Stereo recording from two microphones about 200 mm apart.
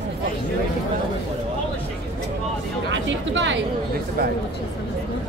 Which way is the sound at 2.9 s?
65° right (ahead or behind).